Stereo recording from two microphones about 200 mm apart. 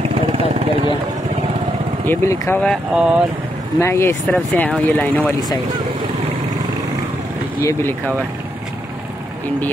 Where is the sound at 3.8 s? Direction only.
15° left (ahead or behind).